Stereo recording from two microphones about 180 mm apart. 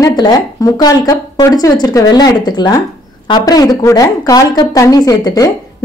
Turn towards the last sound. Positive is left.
turn(degrees=20)  # may be behind; listen again after turning